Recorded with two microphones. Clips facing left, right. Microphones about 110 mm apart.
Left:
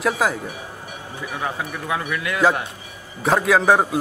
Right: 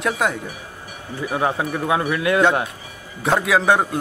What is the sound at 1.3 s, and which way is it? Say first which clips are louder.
A man's voice: right 6 dB; 35° right (ahead or behind).